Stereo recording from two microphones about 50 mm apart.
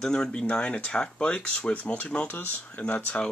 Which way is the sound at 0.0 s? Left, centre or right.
Centre.